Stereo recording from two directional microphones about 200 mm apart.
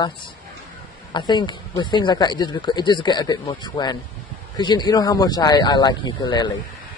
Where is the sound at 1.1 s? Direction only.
20° left (ahead or behind).